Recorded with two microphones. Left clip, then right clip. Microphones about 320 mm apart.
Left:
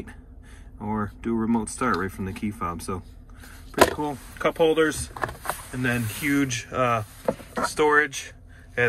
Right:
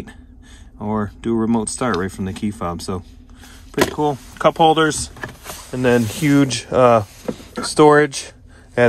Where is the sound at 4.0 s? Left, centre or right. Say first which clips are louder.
Right 9 dB; centre.